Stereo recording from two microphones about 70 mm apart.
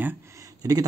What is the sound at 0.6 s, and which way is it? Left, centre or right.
Speech, right.